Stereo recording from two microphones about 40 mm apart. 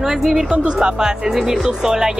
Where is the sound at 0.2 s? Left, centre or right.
Centre.